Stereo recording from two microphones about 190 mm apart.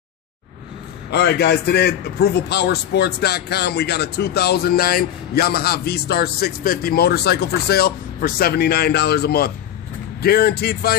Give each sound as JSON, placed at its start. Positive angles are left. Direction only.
{"t": 1.1, "sound": "a man's voice", "side_deg": 60}